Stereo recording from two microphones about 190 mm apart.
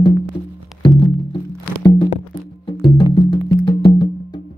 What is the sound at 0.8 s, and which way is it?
Music, 20° left (ahead or behind).